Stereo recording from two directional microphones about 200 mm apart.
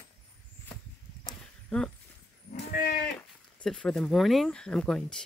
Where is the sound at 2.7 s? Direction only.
45° left (ahead or behind).